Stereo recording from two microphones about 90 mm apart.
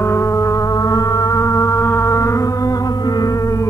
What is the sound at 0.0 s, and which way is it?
Organ, 30° left (ahead or behind).